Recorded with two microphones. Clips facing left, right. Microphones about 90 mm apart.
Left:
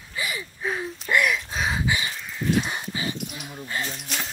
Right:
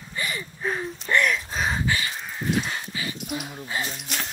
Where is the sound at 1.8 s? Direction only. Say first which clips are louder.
Even; 15° left (ahead or behind).